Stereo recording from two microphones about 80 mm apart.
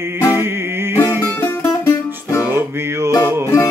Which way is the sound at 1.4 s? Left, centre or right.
Left.